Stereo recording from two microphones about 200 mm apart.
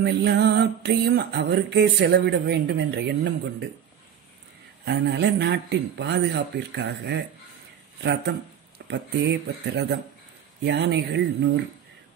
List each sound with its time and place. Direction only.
0.0 s music: 55° right (ahead or behind)
4.8 s music: 55° right (ahead or behind)
8.0 s speech: 55° right (ahead or behind)
10.6 s music: 60° right (ahead or behind)